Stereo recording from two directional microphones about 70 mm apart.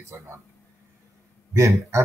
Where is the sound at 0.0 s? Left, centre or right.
Right.